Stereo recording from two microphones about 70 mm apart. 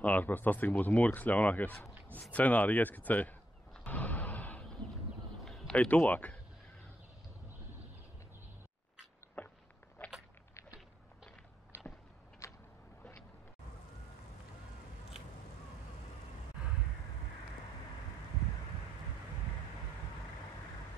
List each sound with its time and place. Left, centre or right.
0.0 s speech: left
3.8 s artillery fire: left
5.4 s a sound: centre
5.7 s speech: centre
9.4 s a sound: left
12.4 s vehicle: left